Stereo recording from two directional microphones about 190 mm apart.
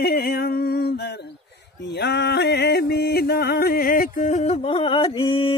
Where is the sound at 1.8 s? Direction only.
65° left (ahead or behind); by 4.6 s 40° left (ahead or behind).